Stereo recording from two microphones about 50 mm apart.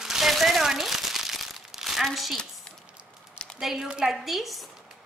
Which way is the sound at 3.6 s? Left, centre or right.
Centre.